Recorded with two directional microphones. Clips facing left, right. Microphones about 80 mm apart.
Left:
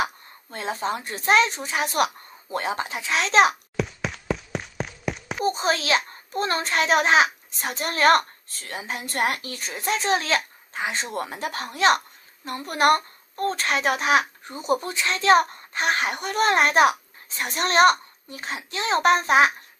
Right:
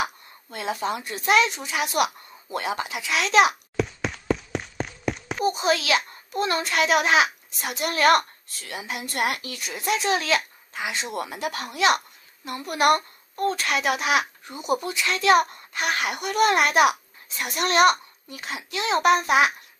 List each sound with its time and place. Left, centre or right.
0.0 s a child's voice: left
3.7 s a sound: centre
5.4 s a child's voice: left